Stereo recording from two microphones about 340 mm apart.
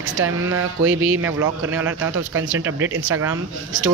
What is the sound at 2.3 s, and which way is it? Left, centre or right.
Speech, right.